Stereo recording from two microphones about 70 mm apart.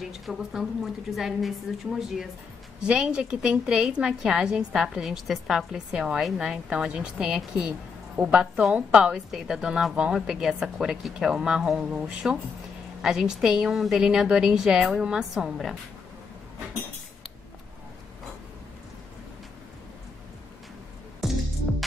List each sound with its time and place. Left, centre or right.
0.0 s a woman's voice: centre
21.2 s music: centre